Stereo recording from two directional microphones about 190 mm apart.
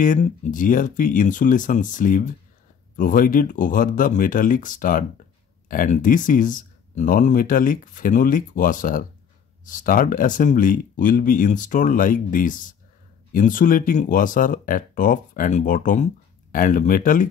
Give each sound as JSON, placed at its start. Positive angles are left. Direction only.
{"t": 0.0, "sound": "speech", "side_deg": 45}